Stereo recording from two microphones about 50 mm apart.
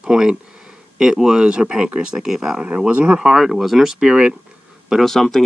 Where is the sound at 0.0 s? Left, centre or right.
Centre.